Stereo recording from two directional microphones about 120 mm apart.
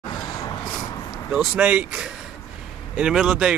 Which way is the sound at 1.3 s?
5° right (ahead or behind).